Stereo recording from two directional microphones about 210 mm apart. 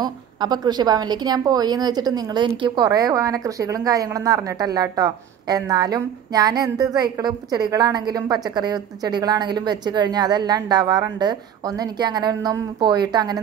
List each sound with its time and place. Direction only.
0.0 s a woman's voice: 20° right (ahead or behind)